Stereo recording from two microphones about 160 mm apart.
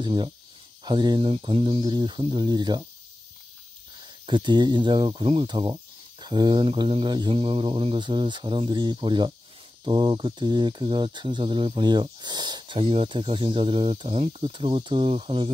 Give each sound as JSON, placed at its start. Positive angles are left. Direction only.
{"t": 0.0, "sound": "speech", "side_deg": -30}
{"t": 4.0, "sound": "speech", "side_deg": -30}